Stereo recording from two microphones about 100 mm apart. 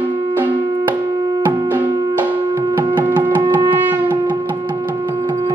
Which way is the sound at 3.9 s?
20° right (ahead or behind).